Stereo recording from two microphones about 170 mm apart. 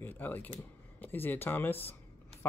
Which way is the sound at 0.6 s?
10° left (ahead or behind).